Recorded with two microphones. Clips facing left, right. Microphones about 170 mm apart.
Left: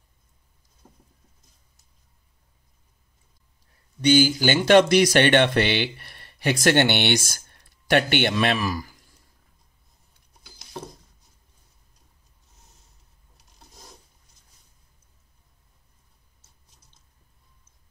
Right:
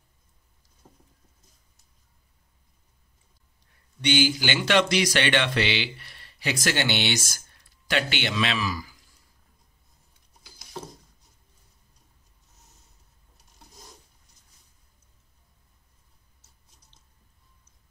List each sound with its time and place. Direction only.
4.0 s a man's voice: 40° left (ahead or behind)